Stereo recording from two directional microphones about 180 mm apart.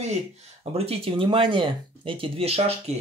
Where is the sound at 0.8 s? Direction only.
30° right (ahead or behind).